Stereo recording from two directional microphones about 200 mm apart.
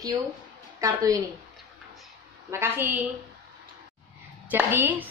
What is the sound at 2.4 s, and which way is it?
Speech, 10° right (ahead or behind).